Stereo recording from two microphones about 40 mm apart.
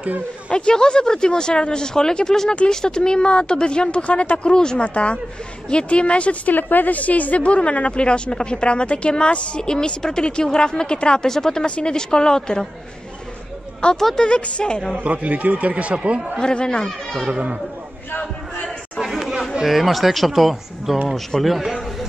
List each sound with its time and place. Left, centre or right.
0.5 s a woman's voice: left
6.5 s a woman's voice: left; by 11.6 s centre
11.6 s a woman's voice: left
13.9 s speech: centre
14.2 s a woman's voice: left
15.0 s speech: right
16.3 s a woman's voice: centre
17.3 s speech: right
18.9 s chatter: centre
19.6 s speech: centre